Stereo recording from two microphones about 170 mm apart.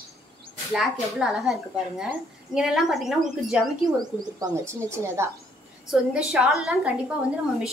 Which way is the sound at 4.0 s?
20° right (ahead or behind).